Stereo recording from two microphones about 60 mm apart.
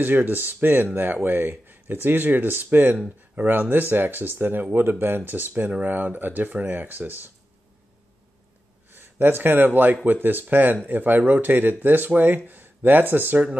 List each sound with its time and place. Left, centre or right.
0.0 s speech: right
5.5 s speech: right
8.9 s speech: right